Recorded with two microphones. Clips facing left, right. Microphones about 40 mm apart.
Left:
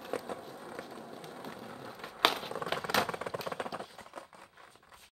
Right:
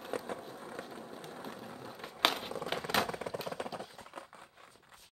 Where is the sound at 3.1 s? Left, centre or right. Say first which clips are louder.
Left 2 dB; left.